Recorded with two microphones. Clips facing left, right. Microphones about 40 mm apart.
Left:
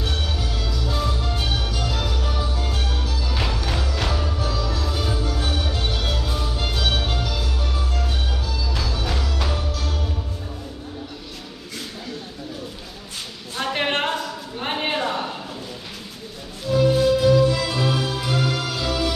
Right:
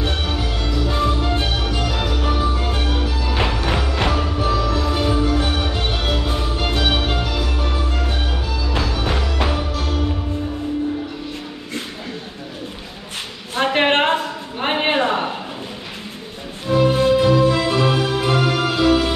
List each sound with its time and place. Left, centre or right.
0.0 s music: right
13.6 s a sound: right
16.6 s music: right